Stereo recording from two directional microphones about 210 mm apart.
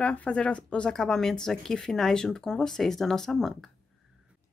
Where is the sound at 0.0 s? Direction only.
5° left (ahead or behind).